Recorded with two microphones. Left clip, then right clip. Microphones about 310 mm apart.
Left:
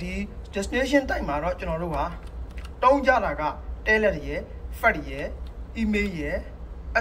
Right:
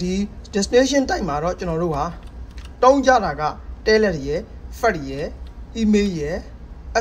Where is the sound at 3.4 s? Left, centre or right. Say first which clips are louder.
Right 5 dB; right.